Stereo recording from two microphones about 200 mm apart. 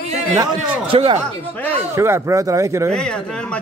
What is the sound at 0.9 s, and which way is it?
Speech, 25° right (ahead or behind).